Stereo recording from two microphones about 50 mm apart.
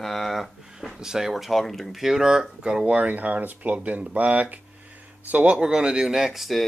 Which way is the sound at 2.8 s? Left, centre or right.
Right.